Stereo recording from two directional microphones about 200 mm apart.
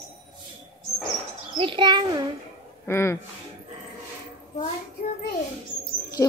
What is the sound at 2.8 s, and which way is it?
Speech, 10° left (ahead or behind).